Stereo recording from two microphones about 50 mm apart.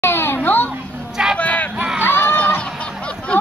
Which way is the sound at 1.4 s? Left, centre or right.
Left.